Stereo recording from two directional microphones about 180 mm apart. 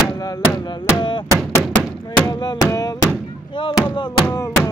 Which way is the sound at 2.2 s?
20° left (ahead or behind).